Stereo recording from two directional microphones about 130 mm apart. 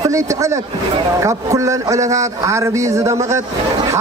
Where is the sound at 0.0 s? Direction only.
25° right (ahead or behind).